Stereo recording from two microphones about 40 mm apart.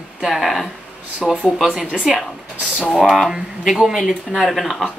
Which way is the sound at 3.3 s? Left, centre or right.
Centre.